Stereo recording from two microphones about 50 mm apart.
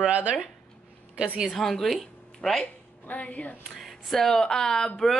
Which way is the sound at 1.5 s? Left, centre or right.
Centre.